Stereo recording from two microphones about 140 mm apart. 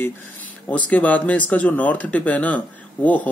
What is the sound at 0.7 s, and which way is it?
Speech, 10° left (ahead or behind).